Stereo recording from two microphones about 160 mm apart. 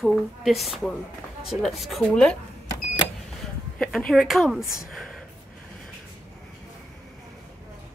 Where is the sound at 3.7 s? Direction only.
Centre (ahead or behind).